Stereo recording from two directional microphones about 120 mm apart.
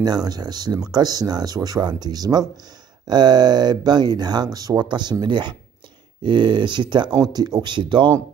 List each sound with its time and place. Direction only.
0.0 s speech: 35° right (ahead or behind)